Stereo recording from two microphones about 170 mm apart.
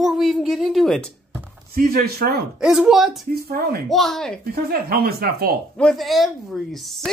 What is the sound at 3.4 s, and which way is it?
Speech, 65° right (ahead or behind).